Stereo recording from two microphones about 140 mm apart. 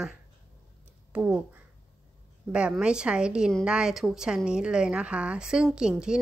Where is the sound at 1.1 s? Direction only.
10° right (ahead or behind).